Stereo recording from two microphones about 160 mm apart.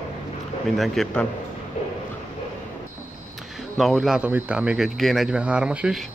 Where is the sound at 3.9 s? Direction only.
5° right (ahead or behind).